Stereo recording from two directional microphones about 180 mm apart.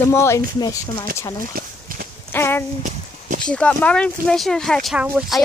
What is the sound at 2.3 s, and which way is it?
Speech, 10° left (ahead or behind).